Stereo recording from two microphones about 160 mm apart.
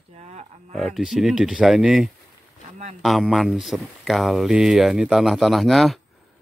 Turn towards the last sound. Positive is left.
turn(degrees=0)  # may be behind; listen again after turning